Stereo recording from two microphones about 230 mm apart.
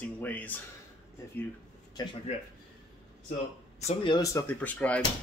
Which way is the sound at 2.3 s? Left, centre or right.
Left.